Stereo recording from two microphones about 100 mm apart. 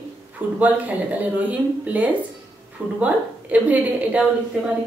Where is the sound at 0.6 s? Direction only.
15° right (ahead or behind).